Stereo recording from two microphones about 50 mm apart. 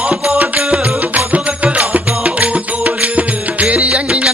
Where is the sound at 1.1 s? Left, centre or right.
Right.